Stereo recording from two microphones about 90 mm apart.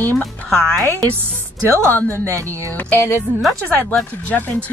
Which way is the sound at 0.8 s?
35° right (ahead or behind).